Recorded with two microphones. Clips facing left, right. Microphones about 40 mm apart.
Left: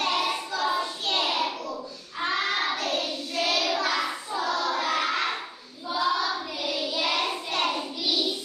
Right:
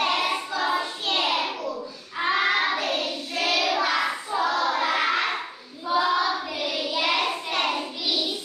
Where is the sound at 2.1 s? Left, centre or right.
Right.